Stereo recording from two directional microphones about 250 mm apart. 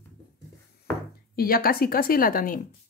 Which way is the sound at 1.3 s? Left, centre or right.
Left.